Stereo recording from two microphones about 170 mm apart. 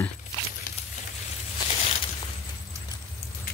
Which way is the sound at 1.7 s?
35° left (ahead or behind).